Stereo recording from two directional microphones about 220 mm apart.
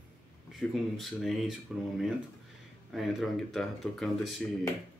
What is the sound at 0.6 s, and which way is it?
Speech, centre (ahead or behind).